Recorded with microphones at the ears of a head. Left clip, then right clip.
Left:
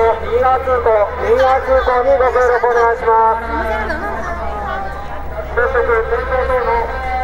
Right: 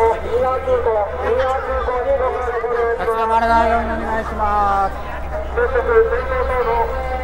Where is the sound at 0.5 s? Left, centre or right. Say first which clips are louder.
Left 6 dB; left.